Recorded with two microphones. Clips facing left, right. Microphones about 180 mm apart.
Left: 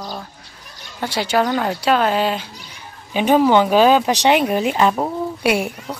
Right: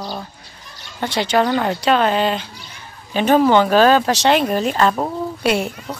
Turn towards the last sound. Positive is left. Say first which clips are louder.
# even
turn(degrees=10)  # may be behind; listen again after turning